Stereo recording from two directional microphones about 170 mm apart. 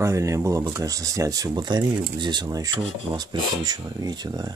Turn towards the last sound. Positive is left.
turn(degrees=-25)  # may be behind; listen again after turning